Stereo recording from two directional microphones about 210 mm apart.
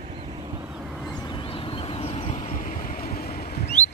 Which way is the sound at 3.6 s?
35° left (ahead or behind).